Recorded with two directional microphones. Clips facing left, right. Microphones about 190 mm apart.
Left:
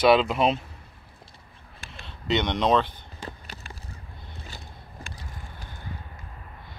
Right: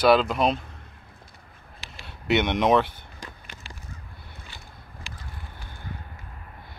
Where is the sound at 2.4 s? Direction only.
15° right (ahead or behind).